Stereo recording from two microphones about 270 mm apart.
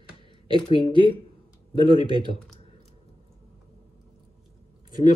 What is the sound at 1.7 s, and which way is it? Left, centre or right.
Speech, centre.